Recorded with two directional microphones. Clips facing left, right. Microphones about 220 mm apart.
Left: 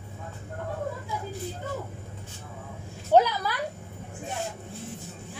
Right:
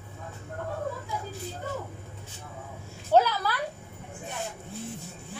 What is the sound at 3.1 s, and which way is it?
Speech, 15° left (ahead or behind).